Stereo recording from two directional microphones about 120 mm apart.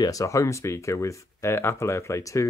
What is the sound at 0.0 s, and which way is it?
Speech, 30° left (ahead or behind).